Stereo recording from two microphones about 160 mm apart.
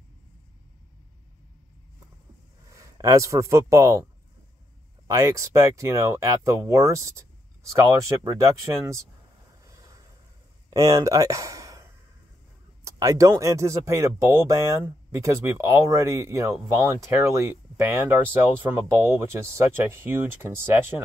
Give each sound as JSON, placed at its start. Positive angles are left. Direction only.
{"t": 2.8, "sound": "speech", "side_deg": -20}
{"t": 9.7, "sound": "a sound", "side_deg": -20}
{"t": 10.7, "sound": "speech", "side_deg": -20}